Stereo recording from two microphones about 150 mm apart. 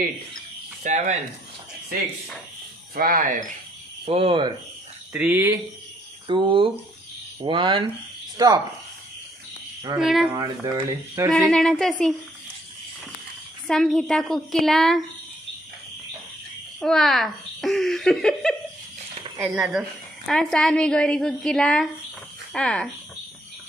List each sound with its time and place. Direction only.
0.8 s speech: 50° right (ahead or behind)
2.9 s speech: 80° right
4.0 s speech: 40° right (ahead or behind)
5.1 s speech: 10° right (ahead or behind)
6.2 s speech: 30° right (ahead or behind)
9.9 s a child's voice: 5° right (ahead or behind)
10.3 s speech: 25° right (ahead or behind)
11.3 s a child's voice: 5° left (ahead or behind)
13.7 s a child's voice: 5° left (ahead or behind)
16.8 s a child's voice: centre (ahead or behind)